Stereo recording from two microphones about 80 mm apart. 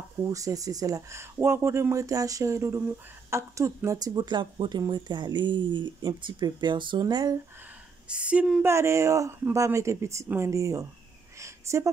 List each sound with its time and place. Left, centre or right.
0.2 s speech: right
8.1 s speech: centre
8.6 s speech: right
10.2 s speech: right
10.5 s speech: right
11.3 s a sound: right